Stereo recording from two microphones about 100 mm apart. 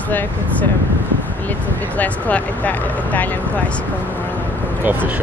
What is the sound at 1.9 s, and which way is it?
Speech, 15° left (ahead or behind).